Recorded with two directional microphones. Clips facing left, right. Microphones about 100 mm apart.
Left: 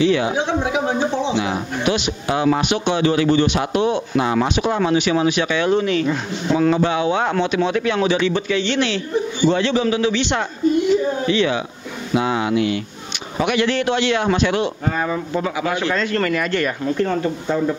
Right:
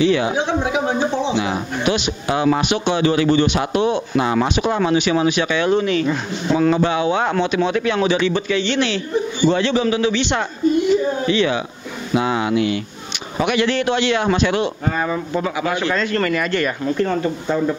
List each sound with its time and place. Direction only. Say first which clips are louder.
0.0 s speech: even; 15° right (ahead or behind)